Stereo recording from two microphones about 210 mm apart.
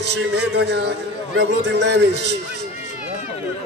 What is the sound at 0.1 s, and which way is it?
A man's voice, 55° right (ahead or behind).